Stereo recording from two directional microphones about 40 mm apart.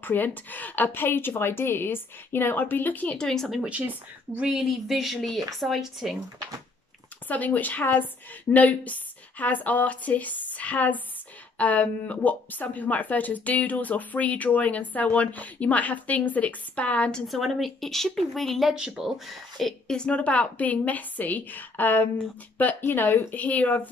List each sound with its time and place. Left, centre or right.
0.0 s a woman's voice: left
2.6 s a woman's voice: left
3.2 s speech: centre
3.6 s speech: right
4.6 s speech: centre
5.8 s speech: centre
7.2 s a woman's voice: left
17.3 s speech: centre
18.9 s speech: centre
20.1 s a woman's voice: left
22.8 s a woman's voice: left
23.3 s a woman's voice: left